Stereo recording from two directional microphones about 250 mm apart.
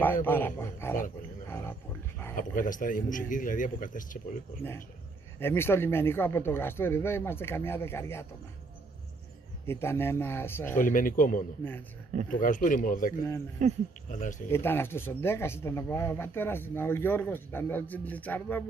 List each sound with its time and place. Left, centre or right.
0.0 s speech: centre
2.3 s a man's voice: left
5.4 s speech: centre
9.7 s speech: centre
10.8 s a man's voice: left
13.6 s speech: right
14.5 s speech: centre